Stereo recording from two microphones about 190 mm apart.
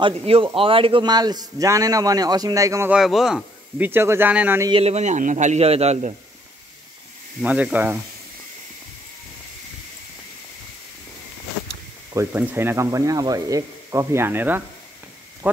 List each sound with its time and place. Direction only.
0.5 s a man's voice: 30° right (ahead or behind)
3.0 s speech: centre (ahead or behind)
4.7 s a man's voice: 35° right (ahead or behind)
7.4 s speech: 10° right (ahead or behind)
12.1 s speech: 15° right (ahead or behind)